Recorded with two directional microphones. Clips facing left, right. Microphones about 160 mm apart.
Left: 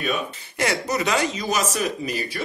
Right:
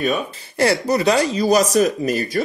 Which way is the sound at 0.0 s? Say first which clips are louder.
Right 5 dB; 35° right (ahead or behind).